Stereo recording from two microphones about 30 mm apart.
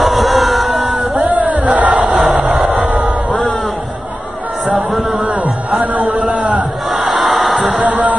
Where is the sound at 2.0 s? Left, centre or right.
Centre.